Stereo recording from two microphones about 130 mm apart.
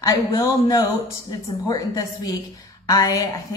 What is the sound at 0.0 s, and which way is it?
A man's voice, 30° left (ahead or behind).